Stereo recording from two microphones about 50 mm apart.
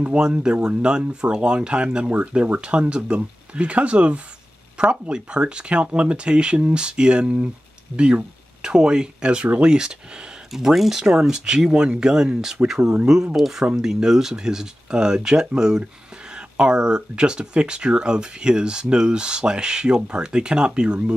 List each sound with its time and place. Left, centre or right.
0.0 s speech: right
10.5 s speech: centre